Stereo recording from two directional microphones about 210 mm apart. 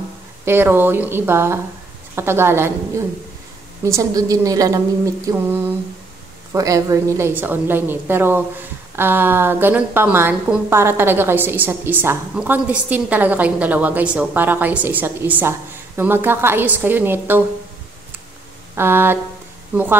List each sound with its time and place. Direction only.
0.5 s a woman's voice: 10° right (ahead or behind)
18.8 s a woman's voice: 10° right (ahead or behind)